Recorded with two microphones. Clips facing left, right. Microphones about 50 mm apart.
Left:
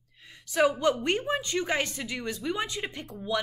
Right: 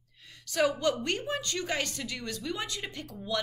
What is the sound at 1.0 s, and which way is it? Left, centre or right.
Speech, left.